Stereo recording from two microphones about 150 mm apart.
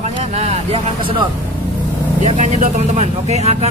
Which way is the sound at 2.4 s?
50° right (ahead or behind).